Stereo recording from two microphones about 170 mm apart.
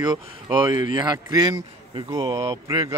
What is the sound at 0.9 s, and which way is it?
A man's voice, 25° right (ahead or behind).